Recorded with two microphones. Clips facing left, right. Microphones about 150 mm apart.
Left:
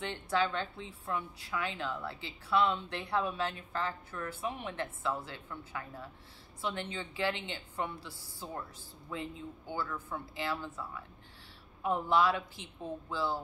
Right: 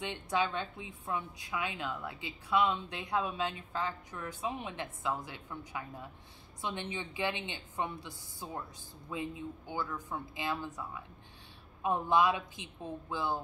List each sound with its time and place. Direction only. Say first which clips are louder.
0.0 s a woman's voice: left 1 dB; 15° right (ahead or behind)